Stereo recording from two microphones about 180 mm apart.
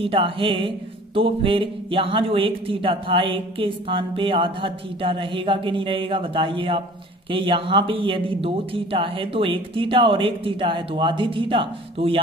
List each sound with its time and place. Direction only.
0.0 s mantra: 30° right (ahead or behind)